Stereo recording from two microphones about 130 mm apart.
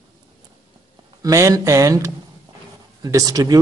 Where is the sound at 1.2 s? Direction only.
25° right (ahead or behind).